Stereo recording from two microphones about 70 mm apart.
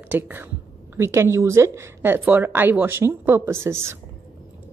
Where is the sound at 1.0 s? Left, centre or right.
Right.